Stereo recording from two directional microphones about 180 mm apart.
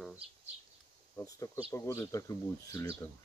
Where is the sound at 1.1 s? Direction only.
15° left (ahead or behind).